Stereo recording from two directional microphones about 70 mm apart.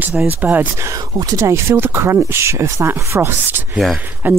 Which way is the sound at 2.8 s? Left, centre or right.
Right.